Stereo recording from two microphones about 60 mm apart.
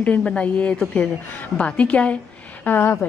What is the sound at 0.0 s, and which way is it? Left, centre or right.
Speech, left.